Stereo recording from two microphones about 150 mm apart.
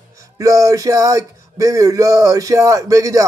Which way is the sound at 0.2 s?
20° right (ahead or behind).